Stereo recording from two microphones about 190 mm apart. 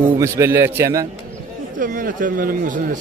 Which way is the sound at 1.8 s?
45° right (ahead or behind).